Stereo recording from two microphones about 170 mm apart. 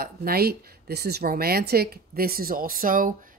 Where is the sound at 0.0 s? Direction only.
65° right (ahead or behind).